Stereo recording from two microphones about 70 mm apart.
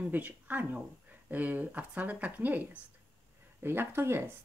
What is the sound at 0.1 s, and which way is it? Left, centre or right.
Speech, right.